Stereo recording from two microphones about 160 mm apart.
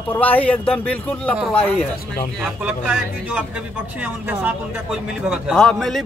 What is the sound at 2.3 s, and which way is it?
A man's voice, 5° right (ahead or behind).